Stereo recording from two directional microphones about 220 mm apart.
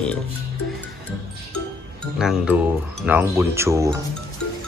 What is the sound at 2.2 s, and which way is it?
Speech, 5° right (ahead or behind).